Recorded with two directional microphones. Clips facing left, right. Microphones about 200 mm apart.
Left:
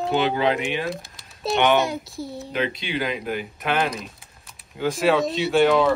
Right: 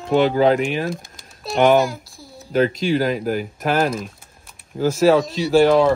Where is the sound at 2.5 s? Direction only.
45° right (ahead or behind).